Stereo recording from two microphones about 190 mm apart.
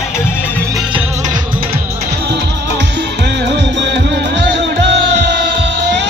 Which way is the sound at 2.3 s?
65° right (ahead or behind).